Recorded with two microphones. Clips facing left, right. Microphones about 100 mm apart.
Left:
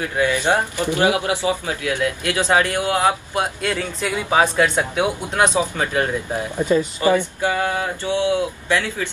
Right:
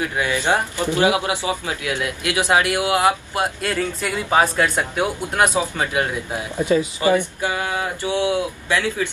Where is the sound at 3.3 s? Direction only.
Centre (ahead or behind).